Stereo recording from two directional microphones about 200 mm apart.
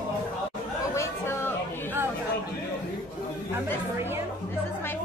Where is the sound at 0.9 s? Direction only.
15° left (ahead or behind).